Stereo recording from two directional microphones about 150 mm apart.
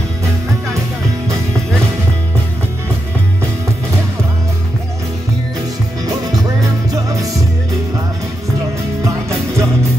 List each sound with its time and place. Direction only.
6.9 s music: 20° right (ahead or behind)
9.0 s music: 20° right (ahead or behind)